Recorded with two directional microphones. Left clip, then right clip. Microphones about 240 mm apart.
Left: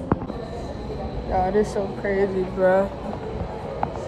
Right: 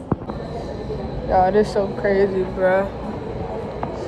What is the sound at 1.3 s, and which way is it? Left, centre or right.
Speech, centre.